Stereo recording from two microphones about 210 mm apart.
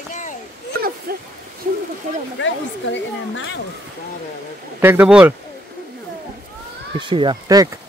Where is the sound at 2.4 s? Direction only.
60° left (ahead or behind).